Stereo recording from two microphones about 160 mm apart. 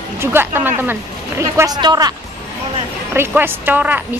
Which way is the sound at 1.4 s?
25° right (ahead or behind).